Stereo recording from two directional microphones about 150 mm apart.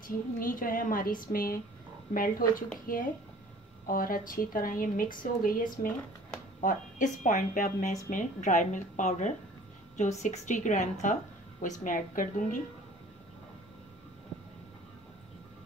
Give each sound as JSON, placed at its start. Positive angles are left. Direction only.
{"t": 0.0, "sound": "a woman's voice", "side_deg": 65}